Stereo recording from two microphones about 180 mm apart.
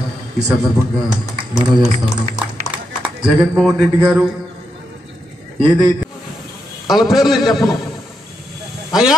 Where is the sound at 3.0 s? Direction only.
Centre (ahead or behind).